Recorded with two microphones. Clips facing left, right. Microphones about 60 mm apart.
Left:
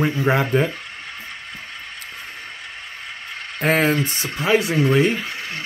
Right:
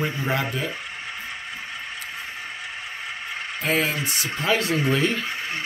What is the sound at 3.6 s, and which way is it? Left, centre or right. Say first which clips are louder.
Speech: left 6 dB; left.